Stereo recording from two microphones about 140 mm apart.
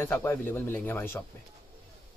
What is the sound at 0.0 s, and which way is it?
Speech, 15° left (ahead or behind).